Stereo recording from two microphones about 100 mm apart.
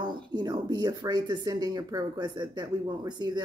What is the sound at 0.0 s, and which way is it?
Speech, 45° right (ahead or behind).